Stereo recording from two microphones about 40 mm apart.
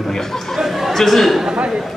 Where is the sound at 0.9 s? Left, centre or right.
Centre.